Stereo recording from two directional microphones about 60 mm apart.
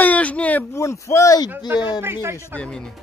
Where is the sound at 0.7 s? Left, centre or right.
Left.